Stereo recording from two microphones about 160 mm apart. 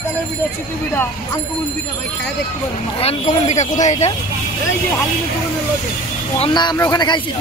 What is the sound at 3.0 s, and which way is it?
Speech, 40° left (ahead or behind).